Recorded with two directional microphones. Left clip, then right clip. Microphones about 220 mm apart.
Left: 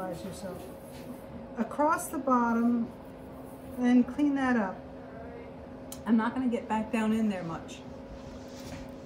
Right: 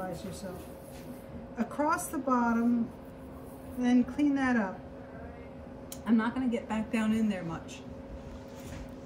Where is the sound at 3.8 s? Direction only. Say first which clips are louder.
Left 2 dB; 15° left (ahead or behind).